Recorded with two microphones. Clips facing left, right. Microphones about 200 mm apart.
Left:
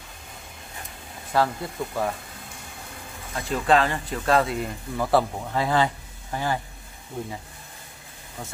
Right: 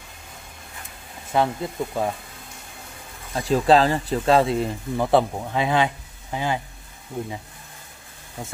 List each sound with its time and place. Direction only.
1.3 s speech: 20° right (ahead or behind)
3.4 s speech: 35° right (ahead or behind); by 6.6 s 15° right (ahead or behind)
8.4 s speech: 10° right (ahead or behind)